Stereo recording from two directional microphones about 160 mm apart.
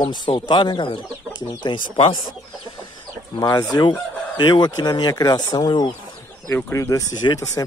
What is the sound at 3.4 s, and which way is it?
Speech, 25° left (ahead or behind).